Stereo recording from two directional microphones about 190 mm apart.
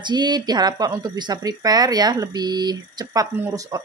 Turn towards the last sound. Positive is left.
turn(degrees=-20)  # may be behind; listen again after turning